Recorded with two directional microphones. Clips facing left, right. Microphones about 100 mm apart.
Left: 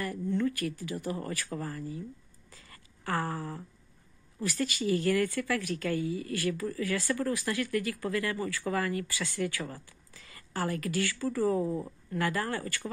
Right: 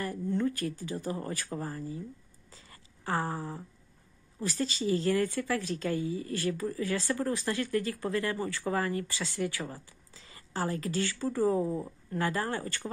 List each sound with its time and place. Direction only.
0.0 s speech: 25° right (ahead or behind)
2.5 s a sound: 20° right (ahead or behind)
4.4 s speech: 25° right (ahead or behind)
11.6 s speech: 10° right (ahead or behind)
12.1 s speech: 25° right (ahead or behind)